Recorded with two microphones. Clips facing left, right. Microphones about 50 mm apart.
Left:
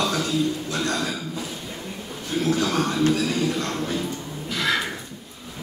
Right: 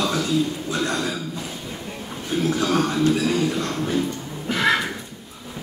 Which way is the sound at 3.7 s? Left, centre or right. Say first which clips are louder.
Right 3 dB; centre.